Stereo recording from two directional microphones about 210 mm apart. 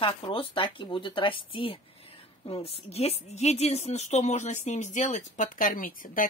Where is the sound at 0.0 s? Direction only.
25° left (ahead or behind).